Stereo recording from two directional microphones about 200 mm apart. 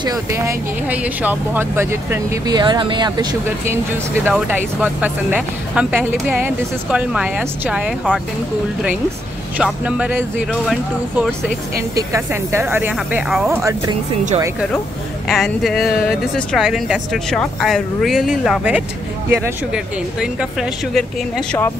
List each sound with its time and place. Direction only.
0.0 s speech: 20° right (ahead or behind)
0.8 s speech: 10° right (ahead or behind)
9.6 s speech: 5° right (ahead or behind)
11.9 s speech: 15° right (ahead or behind)
15.2 s speech: centre (ahead or behind)